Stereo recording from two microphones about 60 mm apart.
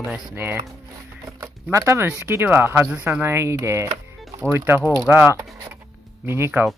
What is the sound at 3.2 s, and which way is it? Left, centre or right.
Speech, right.